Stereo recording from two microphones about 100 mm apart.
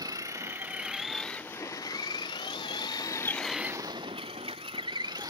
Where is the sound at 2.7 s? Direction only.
45° left (ahead or behind).